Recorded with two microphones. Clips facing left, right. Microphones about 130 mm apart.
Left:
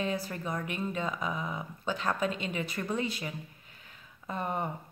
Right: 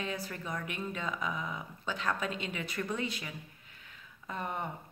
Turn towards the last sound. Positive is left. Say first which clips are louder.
# left 4 dB
turn(degrees=30)  # may be behind; listen again after turning